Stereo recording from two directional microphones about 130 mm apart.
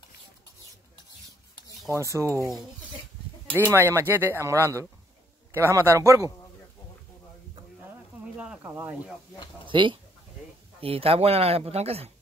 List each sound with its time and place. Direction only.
2.0 s speech: 20° right (ahead or behind)
3.5 s speech: 20° right (ahead or behind)
8.4 s speech: 10° right (ahead or behind)
9.7 s speech: 40° right (ahead or behind)